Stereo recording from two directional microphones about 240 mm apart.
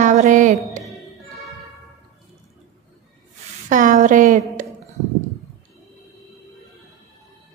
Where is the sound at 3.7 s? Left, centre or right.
Right.